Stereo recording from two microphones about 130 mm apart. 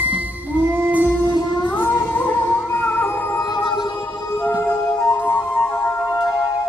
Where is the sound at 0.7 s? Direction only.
15° right (ahead or behind).